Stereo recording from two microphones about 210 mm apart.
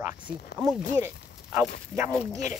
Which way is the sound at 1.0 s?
5° right (ahead or behind).